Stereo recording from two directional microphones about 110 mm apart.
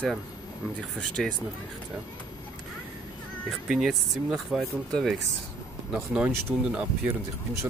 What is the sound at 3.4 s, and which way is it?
Speech, 5° right (ahead or behind).